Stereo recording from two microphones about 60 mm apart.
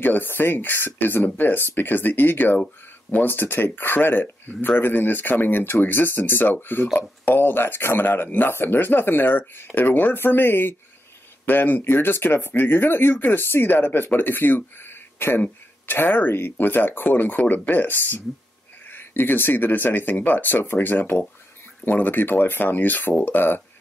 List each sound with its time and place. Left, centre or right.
0.0 s speech: left